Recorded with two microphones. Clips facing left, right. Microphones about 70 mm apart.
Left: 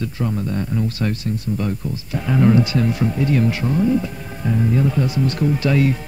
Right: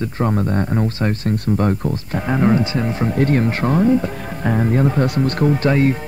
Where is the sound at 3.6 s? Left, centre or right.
Right.